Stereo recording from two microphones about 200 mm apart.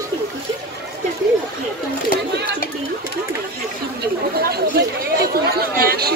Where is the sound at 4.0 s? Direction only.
50° right (ahead or behind).